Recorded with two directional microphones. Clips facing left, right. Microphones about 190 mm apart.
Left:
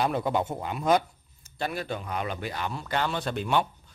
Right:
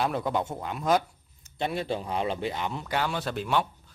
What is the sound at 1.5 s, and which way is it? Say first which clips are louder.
Speech: right 2 dB; 25° right (ahead or behind).